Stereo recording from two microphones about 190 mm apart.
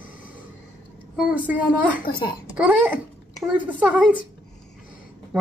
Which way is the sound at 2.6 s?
5° right (ahead or behind).